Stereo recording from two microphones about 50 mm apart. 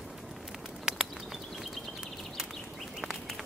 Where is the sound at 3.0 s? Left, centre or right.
Centre.